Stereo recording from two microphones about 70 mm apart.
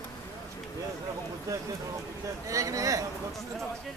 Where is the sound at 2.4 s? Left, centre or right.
Right.